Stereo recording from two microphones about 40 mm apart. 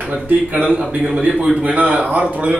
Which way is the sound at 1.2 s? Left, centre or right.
Right.